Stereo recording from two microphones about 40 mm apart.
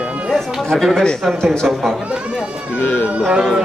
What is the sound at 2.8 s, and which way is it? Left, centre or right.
Speech, left.